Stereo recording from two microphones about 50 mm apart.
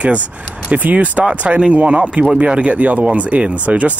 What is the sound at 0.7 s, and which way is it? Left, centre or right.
Speech, right.